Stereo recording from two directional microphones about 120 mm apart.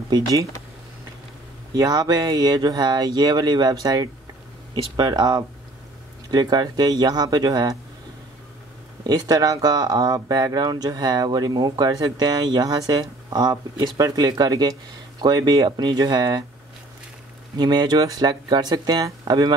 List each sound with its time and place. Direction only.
0.1 s speech: 30° right (ahead or behind)
1.7 s speech: 35° right (ahead or behind)
9.0 s speech: 35° right (ahead or behind)
17.6 s speech: 35° right (ahead or behind)